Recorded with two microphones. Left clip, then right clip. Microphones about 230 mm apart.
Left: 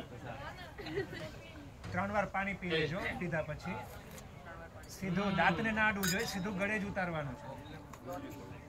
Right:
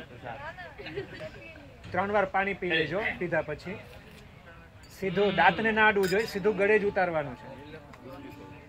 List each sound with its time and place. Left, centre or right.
2.0 s a man's voice: right
5.0 s a man's voice: right